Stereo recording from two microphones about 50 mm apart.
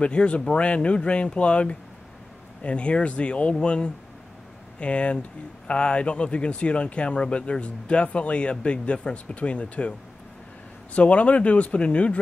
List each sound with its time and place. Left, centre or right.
0.0 s speech: left